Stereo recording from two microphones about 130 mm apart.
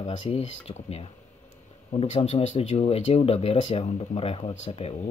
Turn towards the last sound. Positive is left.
turn(degrees=50)  # may be behind; listen again after turning